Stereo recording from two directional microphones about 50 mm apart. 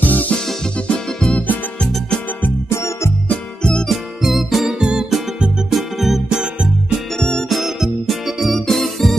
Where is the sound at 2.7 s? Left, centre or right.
Left.